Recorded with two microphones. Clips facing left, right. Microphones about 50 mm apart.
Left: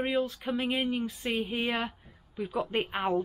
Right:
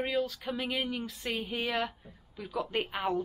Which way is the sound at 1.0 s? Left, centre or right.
Centre.